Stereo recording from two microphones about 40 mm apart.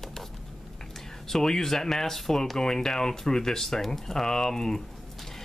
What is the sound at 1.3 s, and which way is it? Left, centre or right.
Speech, centre.